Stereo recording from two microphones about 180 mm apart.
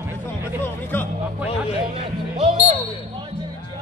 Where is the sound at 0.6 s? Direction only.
10° left (ahead or behind).